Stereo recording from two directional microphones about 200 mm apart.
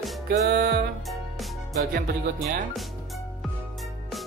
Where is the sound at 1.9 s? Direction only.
45° right (ahead or behind).